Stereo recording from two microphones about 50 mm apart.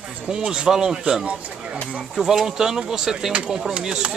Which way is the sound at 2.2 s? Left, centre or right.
Centre.